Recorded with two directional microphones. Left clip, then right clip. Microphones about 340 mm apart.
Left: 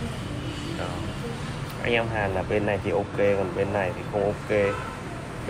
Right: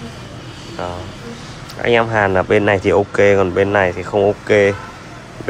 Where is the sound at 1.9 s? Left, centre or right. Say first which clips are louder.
Right 11 dB; right.